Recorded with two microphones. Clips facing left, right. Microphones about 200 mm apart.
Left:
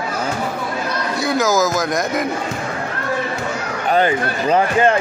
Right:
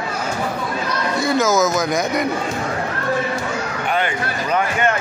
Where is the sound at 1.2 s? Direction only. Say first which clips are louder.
Even; centre (ahead or behind).